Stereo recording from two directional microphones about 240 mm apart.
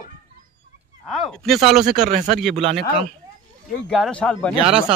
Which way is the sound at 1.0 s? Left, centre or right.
Centre.